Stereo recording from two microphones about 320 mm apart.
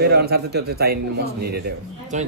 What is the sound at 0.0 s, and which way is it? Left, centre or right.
Speech, right.